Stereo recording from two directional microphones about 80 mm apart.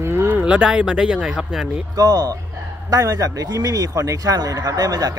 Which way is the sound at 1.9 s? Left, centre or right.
Right.